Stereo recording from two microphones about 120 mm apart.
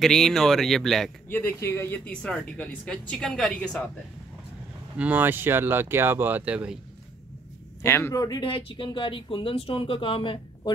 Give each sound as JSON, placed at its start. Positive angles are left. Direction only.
{"t": 0.0, "sound": "speech", "side_deg": 5}
{"t": 1.3, "sound": "speech", "side_deg": 20}
{"t": 2.0, "sound": "speech", "side_deg": 10}
{"t": 4.9, "sound": "speech", "side_deg": -15}
{"t": 7.8, "sound": "speech", "side_deg": 20}
{"t": 8.4, "sound": "speech", "side_deg": 50}